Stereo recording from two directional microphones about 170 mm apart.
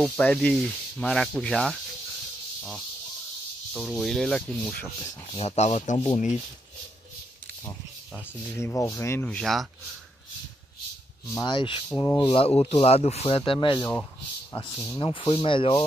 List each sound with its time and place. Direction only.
0.0 s rub: 5° left (ahead or behind)
3.7 s rub: centre (ahead or behind)
5.3 s speech: 35° left (ahead or behind)
8.5 s speech: 15° left (ahead or behind); by 9.7 s centre (ahead or behind)
11.3 s speech: 25° left (ahead or behind)
13.5 s speech: 30° left (ahead or behind)